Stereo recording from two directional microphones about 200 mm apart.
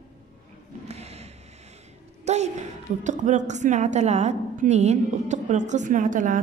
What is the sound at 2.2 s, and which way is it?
A woman's voice, 35° right (ahead or behind).